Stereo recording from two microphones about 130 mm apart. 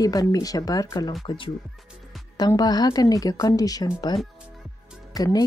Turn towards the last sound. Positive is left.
turn(degrees=30)  # may be behind; listen again after turning